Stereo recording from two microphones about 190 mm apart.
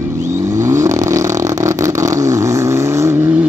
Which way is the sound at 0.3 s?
15° right (ahead or behind).